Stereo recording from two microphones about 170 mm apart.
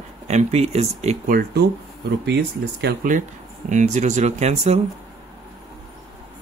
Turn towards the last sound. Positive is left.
turn(degrees=-40)  # may be behind; listen again after turning